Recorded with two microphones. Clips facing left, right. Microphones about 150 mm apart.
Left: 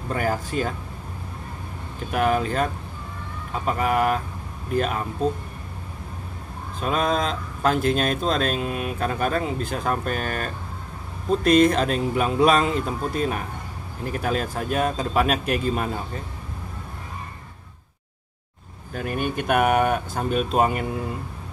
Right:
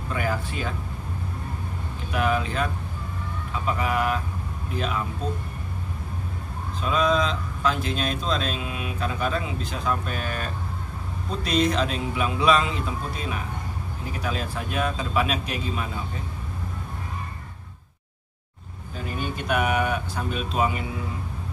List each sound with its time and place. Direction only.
0.1 s speech: 45° left (ahead or behind)
2.0 s speech: 45° left (ahead or behind)
6.8 s speech: 50° left (ahead or behind)
18.9 s speech: 55° left (ahead or behind)